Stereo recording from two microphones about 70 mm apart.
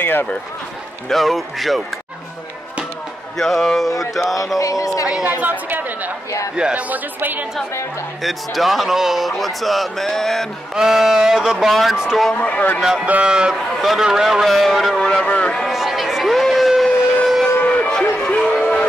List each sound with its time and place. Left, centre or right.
0.0 s a man's voice: left
1.0 s speech: centre
3.3 s speech: centre
4.6 s speech: left
5.4 s a woman's voice: right
6.5 s speech: centre
6.9 s a woman's voice: right
8.2 s speech: centre
10.7 s speech: centre
12.4 s speech: left
13.0 s speech: centre
15.0 s a man's voice: centre
15.7 s a sound: centre
18.2 s a sound: centre